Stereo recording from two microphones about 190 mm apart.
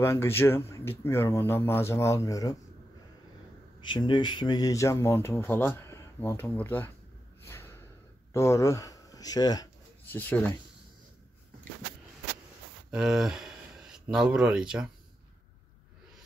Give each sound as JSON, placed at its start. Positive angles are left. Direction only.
{"t": 0.0, "sound": "speech", "side_deg": 15}
{"t": 3.9, "sound": "speech", "side_deg": 25}
{"t": 7.4, "sound": "snort", "side_deg": 10}
{"t": 8.3, "sound": "speech", "side_deg": 15}
{"t": 12.9, "sound": "speech", "side_deg": -5}